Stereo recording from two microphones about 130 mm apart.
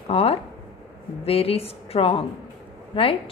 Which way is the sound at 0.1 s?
50° left (ahead or behind).